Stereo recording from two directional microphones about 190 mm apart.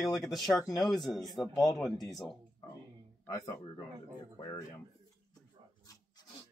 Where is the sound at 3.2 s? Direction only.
15° left (ahead or behind).